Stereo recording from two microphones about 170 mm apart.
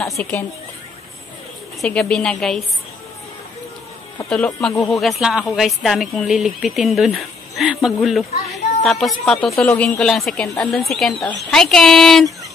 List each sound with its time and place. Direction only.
0.2 s speech: 10° left (ahead or behind)
1.8 s speech: 5° left (ahead or behind)
4.3 s speech: 5° left (ahead or behind)
4.7 s speech: 20° left (ahead or behind)
5.0 s speech: 5° right (ahead or behind)